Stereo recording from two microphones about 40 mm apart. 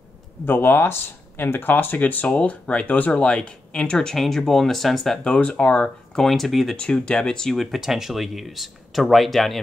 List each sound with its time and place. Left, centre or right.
0.5 s speech: left
2.3 s speech: left
4.2 s speech: centre
5.2 s speech: left
6.2 s speech: centre
6.8 s speech: left
7.5 s speech: centre